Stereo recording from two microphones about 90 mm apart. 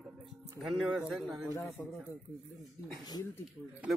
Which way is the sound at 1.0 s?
5° right (ahead or behind).